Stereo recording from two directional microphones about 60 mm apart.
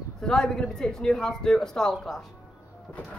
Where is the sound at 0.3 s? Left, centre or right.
Centre.